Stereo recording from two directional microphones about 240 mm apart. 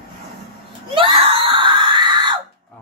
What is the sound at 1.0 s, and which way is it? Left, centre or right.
Screaming, right.